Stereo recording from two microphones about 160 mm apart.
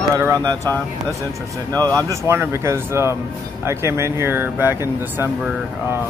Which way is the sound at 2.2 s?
15° right (ahead or behind).